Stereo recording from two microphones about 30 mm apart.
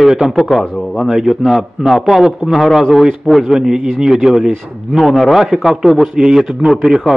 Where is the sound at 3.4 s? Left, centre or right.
Centre.